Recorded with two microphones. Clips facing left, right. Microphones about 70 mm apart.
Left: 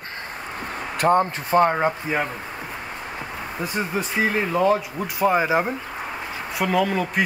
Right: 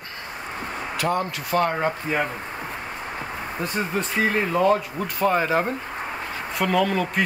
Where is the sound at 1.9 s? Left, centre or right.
Centre.